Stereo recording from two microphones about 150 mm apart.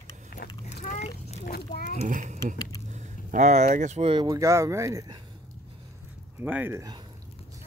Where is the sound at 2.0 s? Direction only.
55° right (ahead or behind).